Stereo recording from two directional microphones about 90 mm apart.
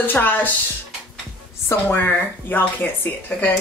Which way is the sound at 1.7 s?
20° left (ahead or behind).